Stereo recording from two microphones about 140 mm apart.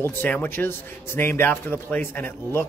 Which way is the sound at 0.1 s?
15° left (ahead or behind).